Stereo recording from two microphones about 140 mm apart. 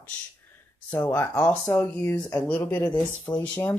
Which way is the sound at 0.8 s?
10° left (ahead or behind).